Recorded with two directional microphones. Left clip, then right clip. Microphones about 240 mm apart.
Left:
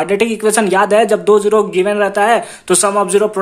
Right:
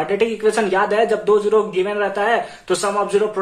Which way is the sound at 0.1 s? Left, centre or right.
Left.